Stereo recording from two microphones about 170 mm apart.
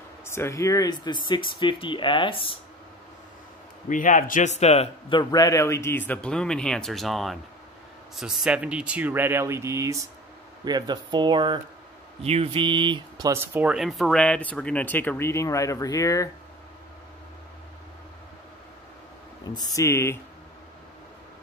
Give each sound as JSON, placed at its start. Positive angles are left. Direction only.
{"t": 0.2, "sound": "speech", "side_deg": 15}
{"t": 3.9, "sound": "a man's voice", "side_deg": 50}
{"t": 5.2, "sound": "a man's voice", "side_deg": 20}
{"t": 13.3, "sound": "speech", "side_deg": -10}
{"t": 19.4, "sound": "speech", "side_deg": 25}